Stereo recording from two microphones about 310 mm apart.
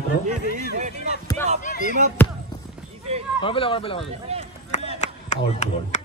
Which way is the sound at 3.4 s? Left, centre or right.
Centre.